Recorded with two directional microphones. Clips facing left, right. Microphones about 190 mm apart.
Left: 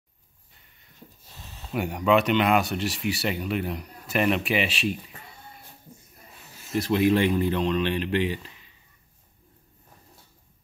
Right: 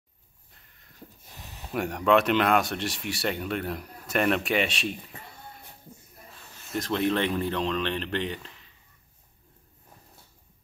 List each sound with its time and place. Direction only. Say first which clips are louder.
1.3 s a sound: right 1 dB; 15° right (ahead or behind)
1.7 s speech: left 1 dB; centre (ahead or behind)
6.5 s speech: left 4 dB; 5° left (ahead or behind)